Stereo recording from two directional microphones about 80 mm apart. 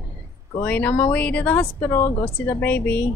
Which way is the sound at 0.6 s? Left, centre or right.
Left.